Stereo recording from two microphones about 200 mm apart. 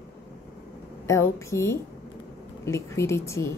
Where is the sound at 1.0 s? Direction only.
15° left (ahead or behind).